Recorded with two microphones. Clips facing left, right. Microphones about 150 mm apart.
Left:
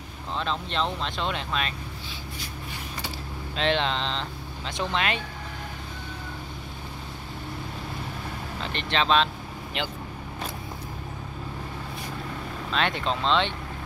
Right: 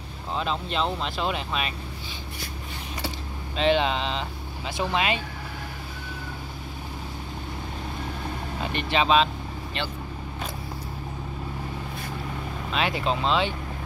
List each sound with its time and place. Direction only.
0.3 s speech: 5° right (ahead or behind)
3.5 s speech: 5° right (ahead or behind)
8.6 s speech: 10° right (ahead or behind)
12.7 s speech: 5° right (ahead or behind)